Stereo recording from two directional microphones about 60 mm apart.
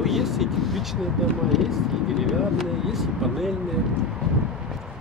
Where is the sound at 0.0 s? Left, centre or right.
Centre.